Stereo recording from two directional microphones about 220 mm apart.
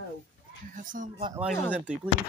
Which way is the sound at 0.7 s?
35° right (ahead or behind).